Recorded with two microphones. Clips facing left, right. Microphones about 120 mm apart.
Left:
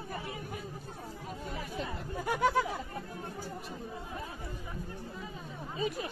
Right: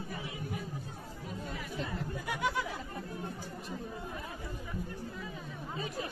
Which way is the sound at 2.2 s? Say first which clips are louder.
Left 7 dB; 45° left (ahead or behind).